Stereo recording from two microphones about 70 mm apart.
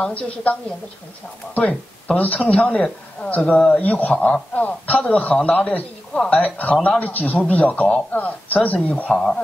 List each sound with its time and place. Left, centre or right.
0.0 s a woman's voice: centre
9.1 s a woman's voice: centre